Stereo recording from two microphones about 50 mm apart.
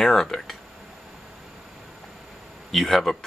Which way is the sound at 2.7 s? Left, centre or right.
Centre.